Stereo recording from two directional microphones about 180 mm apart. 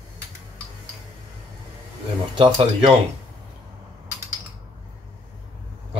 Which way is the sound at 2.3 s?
30° right (ahead or behind).